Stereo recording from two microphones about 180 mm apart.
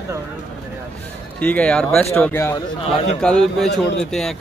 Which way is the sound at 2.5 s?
30° left (ahead or behind).